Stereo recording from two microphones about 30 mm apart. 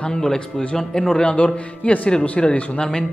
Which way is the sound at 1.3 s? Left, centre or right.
Left.